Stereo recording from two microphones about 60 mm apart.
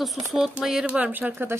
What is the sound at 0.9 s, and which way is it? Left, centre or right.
Speech, right.